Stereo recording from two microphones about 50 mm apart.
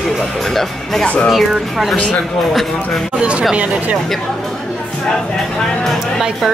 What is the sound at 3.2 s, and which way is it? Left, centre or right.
Speech, right.